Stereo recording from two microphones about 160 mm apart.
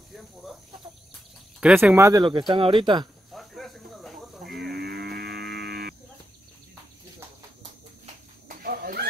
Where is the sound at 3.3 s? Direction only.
Centre (ahead or behind).